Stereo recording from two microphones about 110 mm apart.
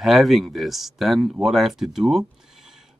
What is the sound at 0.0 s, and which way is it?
Speech, centre (ahead or behind).